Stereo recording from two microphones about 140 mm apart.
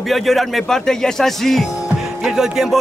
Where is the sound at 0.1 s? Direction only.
Centre (ahead or behind).